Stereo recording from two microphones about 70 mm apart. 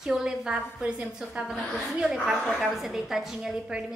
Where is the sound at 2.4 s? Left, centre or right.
Centre.